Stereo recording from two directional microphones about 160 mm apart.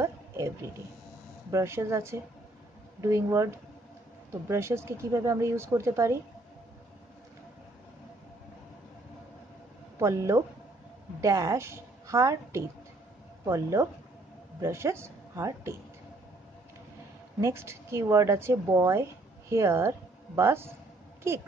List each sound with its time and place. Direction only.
0.0 s a sound: 20° right (ahead or behind)
1.5 s speech: 15° right (ahead or behind)
9.9 s a woman's voice: 20° right (ahead or behind)
17.4 s a woman's voice: 15° right (ahead or behind)